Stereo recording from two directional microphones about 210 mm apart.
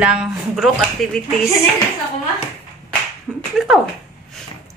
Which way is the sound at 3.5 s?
Centre (ahead or behind).